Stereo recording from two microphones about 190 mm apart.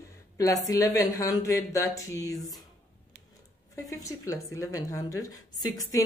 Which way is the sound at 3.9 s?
15° left (ahead or behind).